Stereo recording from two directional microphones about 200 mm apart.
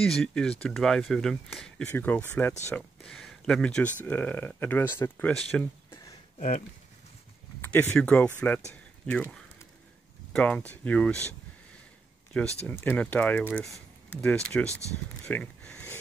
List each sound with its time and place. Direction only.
0.0 s speech: 5° left (ahead or behind)
6.3 s speech: 40° left (ahead or behind)
7.6 s speech: 10° left (ahead or behind)
12.6 s speech: 10° left (ahead or behind)
15.2 s a sound: 10° left (ahead or behind)